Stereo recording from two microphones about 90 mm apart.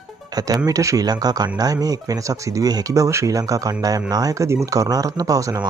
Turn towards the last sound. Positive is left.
turn(degrees=-40)  # may be behind; listen again after turning